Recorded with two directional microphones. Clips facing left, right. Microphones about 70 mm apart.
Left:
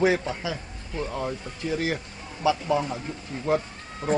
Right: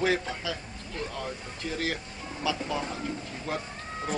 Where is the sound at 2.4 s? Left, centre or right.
Left.